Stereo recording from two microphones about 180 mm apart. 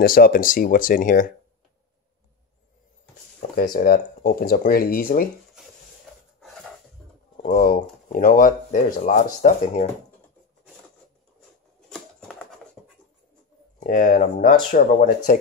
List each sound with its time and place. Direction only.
0.0 s speech: 55° left (ahead or behind)
3.5 s speech: 55° left (ahead or behind)
6.4 s a sound: centre (ahead or behind)
7.4 s speech: 50° left (ahead or behind)
11.9 s a sound: 5° left (ahead or behind)
13.7 s speech: 45° left (ahead or behind)